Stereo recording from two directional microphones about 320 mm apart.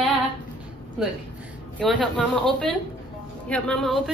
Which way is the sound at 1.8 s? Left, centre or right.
Centre.